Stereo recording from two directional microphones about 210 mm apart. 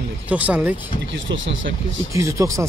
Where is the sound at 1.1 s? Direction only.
60° right (ahead or behind).